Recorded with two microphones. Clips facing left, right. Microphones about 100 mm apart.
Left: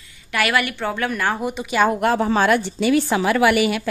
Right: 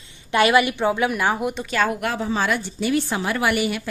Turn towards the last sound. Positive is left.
turn(degrees=90)